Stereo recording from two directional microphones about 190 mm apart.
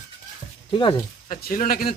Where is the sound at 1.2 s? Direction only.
45° left (ahead or behind).